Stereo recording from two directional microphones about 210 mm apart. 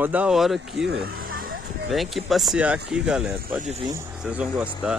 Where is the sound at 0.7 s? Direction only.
50° right (ahead or behind).